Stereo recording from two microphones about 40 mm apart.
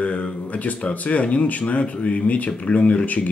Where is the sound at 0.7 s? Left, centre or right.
Left.